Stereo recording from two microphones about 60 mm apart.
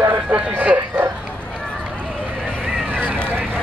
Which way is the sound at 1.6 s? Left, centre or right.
Centre.